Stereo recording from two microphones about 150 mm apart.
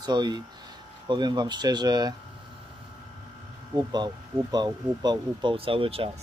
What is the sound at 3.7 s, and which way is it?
Speech, 30° right (ahead or behind).